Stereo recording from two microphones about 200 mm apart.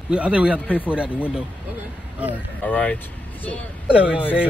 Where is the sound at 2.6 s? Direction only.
10° left (ahead or behind).